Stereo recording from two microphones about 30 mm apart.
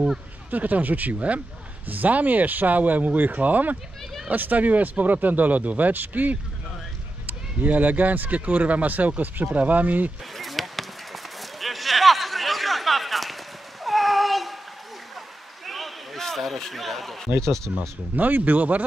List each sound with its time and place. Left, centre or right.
0.5 s speech: right
1.9 s speech: right
5.6 s speech: right
8.9 s speech: right
9.5 s speech: right
10.3 s a sound: centre
13.8 s cat: centre
15.6 s a sound: centre
16.2 s speech: centre
18.1 s speech: right